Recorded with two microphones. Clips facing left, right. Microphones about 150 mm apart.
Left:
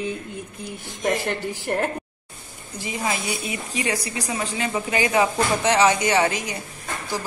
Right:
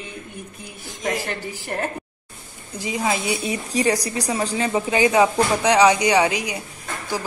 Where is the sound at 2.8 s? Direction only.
15° right (ahead or behind).